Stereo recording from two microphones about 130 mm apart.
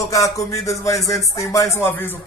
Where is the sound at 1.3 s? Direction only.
25° left (ahead or behind).